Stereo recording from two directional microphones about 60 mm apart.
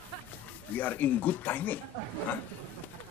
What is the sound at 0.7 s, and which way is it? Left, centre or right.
Speech, left.